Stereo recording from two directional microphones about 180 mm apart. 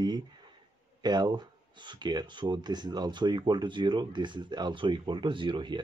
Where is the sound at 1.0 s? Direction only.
25° right (ahead or behind).